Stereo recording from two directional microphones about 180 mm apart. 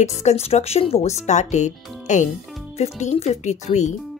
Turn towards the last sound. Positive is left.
turn(degrees=40)  # may be behind; listen again after turning